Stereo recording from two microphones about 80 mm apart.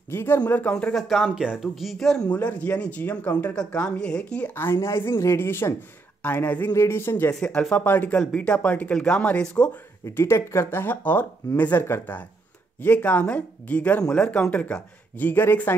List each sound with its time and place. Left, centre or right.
0.1 s speech: left
0.5 s speech: centre
0.9 s speech: centre
2.3 s speech: centre
4.6 s speech: left
7.3 s speech: centre
10.0 s speech: left